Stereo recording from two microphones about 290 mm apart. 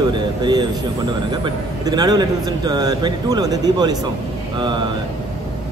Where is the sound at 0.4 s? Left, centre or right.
Centre.